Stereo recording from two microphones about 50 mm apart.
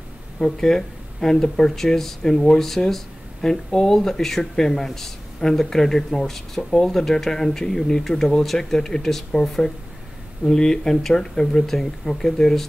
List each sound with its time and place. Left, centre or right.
0.4 s speech: centre